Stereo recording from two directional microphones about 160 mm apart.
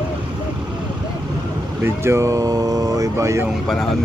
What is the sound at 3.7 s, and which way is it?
Speech, centre (ahead or behind).